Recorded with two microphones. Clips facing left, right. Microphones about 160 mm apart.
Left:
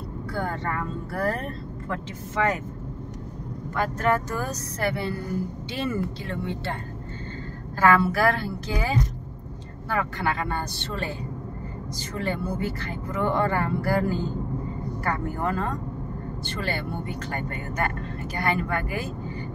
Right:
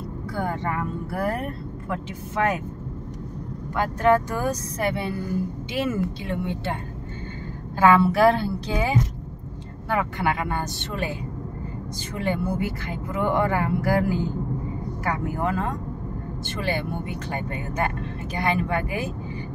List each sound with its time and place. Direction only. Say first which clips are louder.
0.3 s speech: right 2 dB; 15° right (ahead or behind)
3.7 s a woman's voice: right 4 dB; 15° right (ahead or behind)
12.2 s speech: right 3 dB; 15° right (ahead or behind)